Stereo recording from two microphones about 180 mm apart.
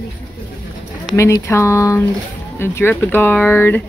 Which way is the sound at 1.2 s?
15° left (ahead or behind).